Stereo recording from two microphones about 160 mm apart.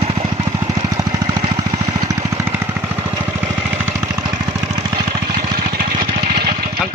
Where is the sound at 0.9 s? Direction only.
25° right (ahead or behind).